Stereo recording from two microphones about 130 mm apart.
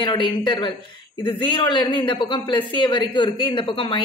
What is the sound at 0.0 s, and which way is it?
A man's voice, 35° left (ahead or behind).